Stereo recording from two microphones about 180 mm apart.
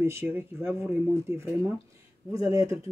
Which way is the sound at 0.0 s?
15° right (ahead or behind).